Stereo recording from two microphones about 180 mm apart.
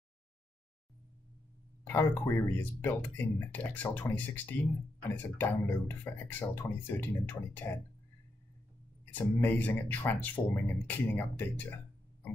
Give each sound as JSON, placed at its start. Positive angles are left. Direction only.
{"t": 1.9, "sound": "speech", "side_deg": 10}
{"t": 9.1, "sound": "speech", "side_deg": 10}